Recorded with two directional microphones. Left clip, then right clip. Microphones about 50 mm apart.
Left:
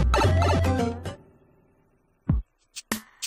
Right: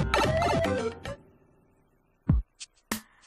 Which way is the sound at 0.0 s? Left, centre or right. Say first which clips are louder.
Left 1 dB; right.